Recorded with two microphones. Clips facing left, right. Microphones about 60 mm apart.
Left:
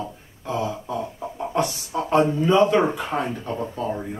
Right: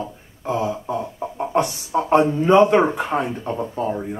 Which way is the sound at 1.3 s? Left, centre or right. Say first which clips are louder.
Right 3 dB; right.